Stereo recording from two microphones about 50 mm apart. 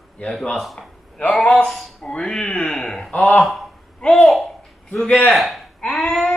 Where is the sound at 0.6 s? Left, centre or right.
Centre.